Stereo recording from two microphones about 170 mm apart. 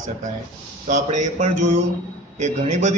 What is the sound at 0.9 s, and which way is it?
A man's voice, 45° right (ahead or behind).